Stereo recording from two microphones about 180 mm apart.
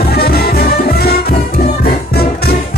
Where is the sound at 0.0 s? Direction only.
60° left (ahead or behind).